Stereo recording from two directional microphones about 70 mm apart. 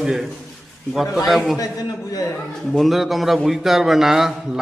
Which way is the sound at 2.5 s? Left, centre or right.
Centre.